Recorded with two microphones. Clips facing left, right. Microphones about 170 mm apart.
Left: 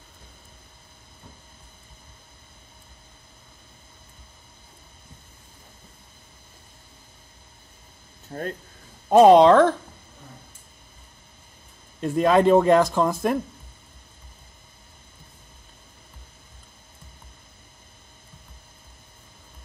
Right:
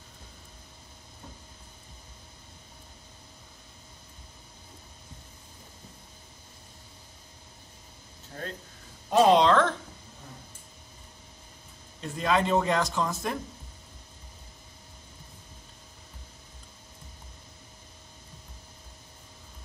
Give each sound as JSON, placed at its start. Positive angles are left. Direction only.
{"t": 8.3, "sound": "speech", "side_deg": 50}
{"t": 12.0, "sound": "speech", "side_deg": 50}